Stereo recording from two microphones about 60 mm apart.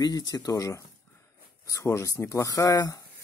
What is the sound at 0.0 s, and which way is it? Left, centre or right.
Speech, left.